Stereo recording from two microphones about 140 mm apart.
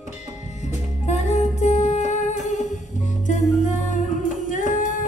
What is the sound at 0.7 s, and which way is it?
Music, 55° left (ahead or behind).